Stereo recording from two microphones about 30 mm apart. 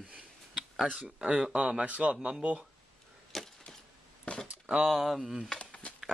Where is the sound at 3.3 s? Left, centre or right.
Centre.